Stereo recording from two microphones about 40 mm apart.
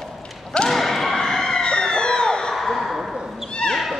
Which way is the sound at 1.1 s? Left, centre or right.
Centre.